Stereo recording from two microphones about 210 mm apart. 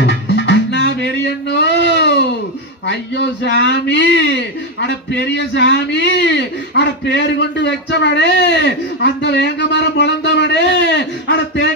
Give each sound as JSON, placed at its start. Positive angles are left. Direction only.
{"t": 0.0, "sound": "music", "side_deg": 55}
{"t": 1.2, "sound": "a sound", "side_deg": 55}
{"t": 2.9, "sound": "a man's voice", "side_deg": 55}